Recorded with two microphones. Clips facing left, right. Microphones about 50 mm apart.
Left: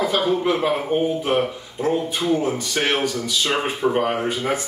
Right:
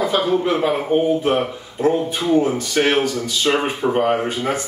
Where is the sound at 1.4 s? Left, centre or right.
Centre.